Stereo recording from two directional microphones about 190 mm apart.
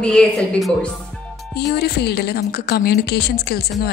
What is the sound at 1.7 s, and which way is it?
A woman's voice, 60° left (ahead or behind).